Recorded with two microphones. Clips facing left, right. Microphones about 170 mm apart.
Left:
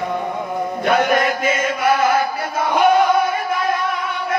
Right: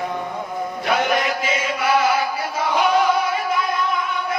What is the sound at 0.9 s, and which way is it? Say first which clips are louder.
Chant: left 4 dB; 50° left (ahead or behind).